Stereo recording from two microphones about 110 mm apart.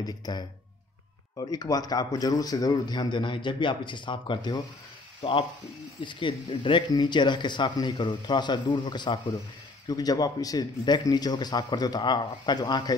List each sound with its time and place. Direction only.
0.0 s a man's voice: 40° left (ahead or behind)
5.9 s a man's voice: 50° left (ahead or behind)